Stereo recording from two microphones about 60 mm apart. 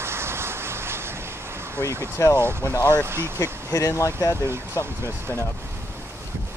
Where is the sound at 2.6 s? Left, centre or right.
Left.